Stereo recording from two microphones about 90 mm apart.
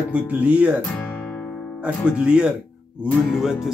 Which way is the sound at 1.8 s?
10° right (ahead or behind).